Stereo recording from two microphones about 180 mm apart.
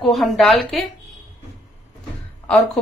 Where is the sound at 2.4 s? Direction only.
5° left (ahead or behind).